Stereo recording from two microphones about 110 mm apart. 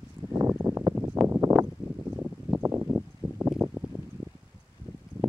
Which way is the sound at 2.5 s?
20° right (ahead or behind).